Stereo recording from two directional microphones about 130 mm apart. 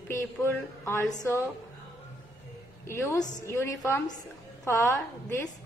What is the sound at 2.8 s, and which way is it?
A woman's voice, 20° left (ahead or behind).